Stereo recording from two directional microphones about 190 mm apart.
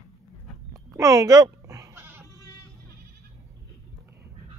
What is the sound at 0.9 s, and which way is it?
Bleat, 15° right (ahead or behind).